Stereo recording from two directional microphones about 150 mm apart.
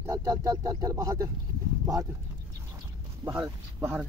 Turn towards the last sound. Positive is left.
turn(degrees=-10)  # may be behind; listen again after turning